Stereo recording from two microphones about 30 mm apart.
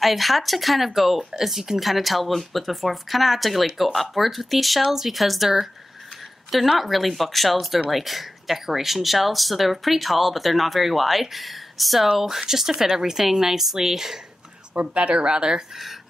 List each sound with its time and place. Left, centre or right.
0.0 s speech: centre
6.8 s speech: centre
15.0 s a woman's voice: right
15.7 s speech: centre